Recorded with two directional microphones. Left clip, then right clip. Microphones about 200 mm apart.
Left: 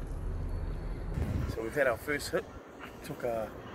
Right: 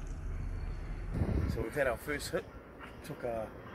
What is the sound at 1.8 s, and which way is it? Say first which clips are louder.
Speech: left 4 dB; centre (ahead or behind).